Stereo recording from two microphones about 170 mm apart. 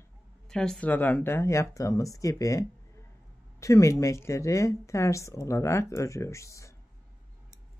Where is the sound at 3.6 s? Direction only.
20° left (ahead or behind).